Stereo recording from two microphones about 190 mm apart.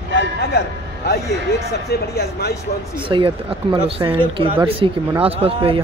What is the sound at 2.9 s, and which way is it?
Speech, 25° right (ahead or behind).